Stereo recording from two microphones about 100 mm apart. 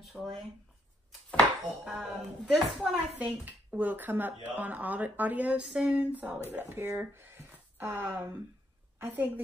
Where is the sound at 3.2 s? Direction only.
15° right (ahead or behind).